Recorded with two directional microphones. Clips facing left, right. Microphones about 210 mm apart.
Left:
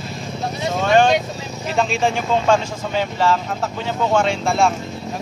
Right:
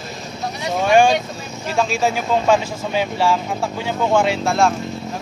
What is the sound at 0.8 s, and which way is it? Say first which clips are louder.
Speech: right 1 dB; 10° right (ahead or behind).